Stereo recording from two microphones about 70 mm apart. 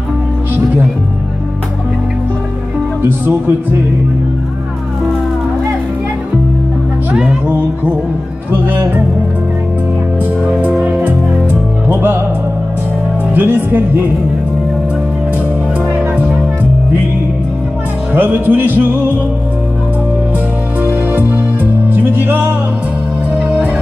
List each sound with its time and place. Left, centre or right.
3.0 s speech: right
8.5 s music: right
10.8 s music: right
13.3 s speech: right
18.1 s speech: right
20.8 s music: right